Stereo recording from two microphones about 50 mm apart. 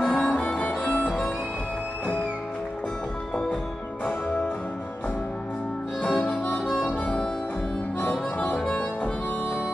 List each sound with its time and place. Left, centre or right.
0.0 s music: centre
6.3 s harmonica: centre
8.4 s music: left